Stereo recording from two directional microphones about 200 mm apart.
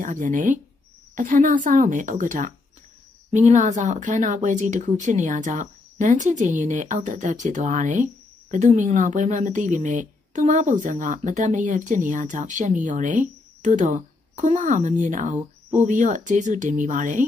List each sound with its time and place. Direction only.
0.0 s speech: 40° right (ahead or behind)